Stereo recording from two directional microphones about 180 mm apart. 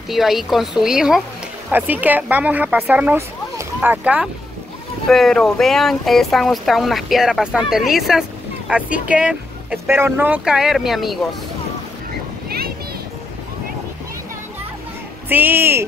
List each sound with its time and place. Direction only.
0.1 s speech: centre (ahead or behind)
12.4 s a sound: 60° right (ahead or behind)
15.2 s speech: 10° right (ahead or behind)